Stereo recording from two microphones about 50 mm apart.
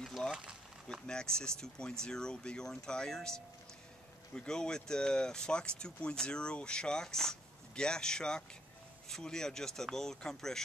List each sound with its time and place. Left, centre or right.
0.3 s speech: centre
1.0 s speech: centre